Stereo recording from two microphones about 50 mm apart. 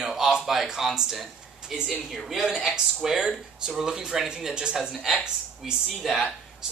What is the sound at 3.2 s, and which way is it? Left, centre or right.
Speech, centre.